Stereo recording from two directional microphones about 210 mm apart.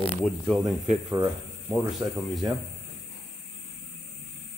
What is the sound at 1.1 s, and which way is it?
Speech, 15° right (ahead or behind).